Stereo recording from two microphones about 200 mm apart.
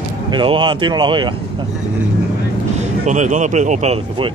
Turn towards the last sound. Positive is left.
turn(degrees=-30)  # may be behind; listen again after turning